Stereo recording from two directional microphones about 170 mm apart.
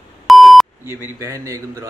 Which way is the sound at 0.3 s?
Centre (ahead or behind).